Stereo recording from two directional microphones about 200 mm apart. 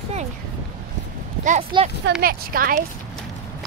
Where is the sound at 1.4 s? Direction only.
40° right (ahead or behind).